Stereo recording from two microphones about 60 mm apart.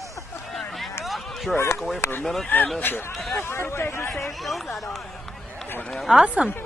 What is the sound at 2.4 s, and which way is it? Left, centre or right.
Speech, left.